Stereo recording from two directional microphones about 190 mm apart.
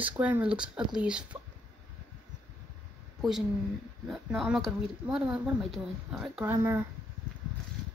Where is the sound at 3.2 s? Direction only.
Centre (ahead or behind).